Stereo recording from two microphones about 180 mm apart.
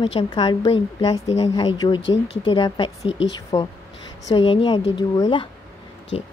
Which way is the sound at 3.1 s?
90° left.